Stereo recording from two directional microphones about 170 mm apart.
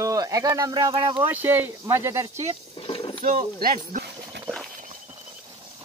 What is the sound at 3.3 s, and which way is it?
Speech, 55° right (ahead or behind).